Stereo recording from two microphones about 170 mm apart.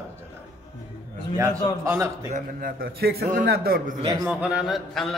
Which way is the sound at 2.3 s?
55° right (ahead or behind).